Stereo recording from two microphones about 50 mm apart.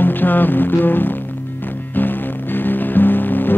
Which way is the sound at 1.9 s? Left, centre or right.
Left.